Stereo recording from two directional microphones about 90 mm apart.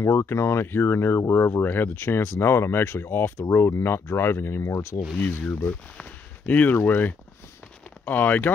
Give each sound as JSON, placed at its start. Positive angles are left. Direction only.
{"t": 0.0, "sound": "speech", "side_deg": 30}